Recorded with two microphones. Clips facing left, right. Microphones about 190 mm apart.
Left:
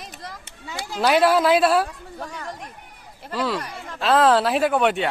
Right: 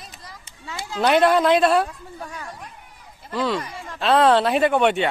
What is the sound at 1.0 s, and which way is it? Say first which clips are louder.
Speech: right 1 dB; 5° left (ahead or behind).